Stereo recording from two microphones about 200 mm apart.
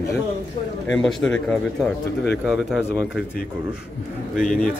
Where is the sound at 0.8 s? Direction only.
5° left (ahead or behind).